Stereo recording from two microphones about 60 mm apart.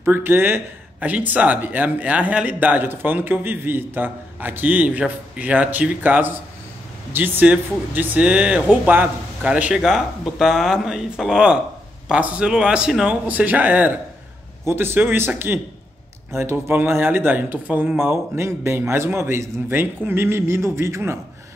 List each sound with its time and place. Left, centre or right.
0.0 s speech: right
1.0 s a man's voice: right
9.8 s speech: centre
13.3 s a man's voice: right
14.6 s speech: right
17.9 s a man's voice: right